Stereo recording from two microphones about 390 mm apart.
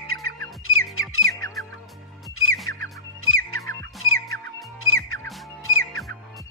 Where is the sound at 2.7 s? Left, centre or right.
Left.